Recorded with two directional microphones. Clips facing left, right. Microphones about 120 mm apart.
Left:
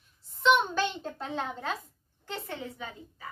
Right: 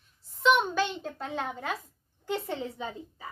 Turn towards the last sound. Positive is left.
turn(degrees=-20)  # may be behind; listen again after turning